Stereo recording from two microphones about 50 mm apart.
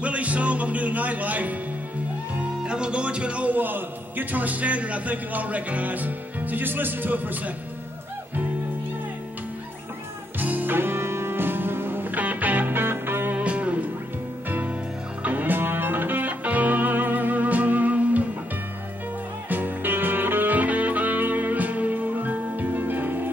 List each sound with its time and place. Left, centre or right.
0.0 s music: right
2.6 s music: centre
3.5 s a man's voice: right
10.4 s music: right
13.4 s music: right
19.5 s music: right